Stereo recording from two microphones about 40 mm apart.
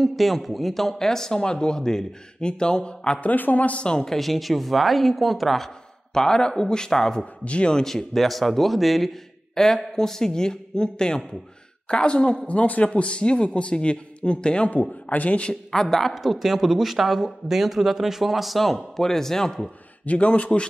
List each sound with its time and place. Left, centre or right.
0.0 s speech: centre; by 3.2 s left
3.2 s a man's voice: left
3.8 s speech: left
4.1 s speech: centre
6.1 s speech: centre
7.4 s speech: left
7.7 s speech: centre; by 12.4 s left
12.4 s speech: left
12.8 s speech: left
14.7 s speech: left
15.7 s speech: centre
16.2 s speech: centre
20.1 s speech: left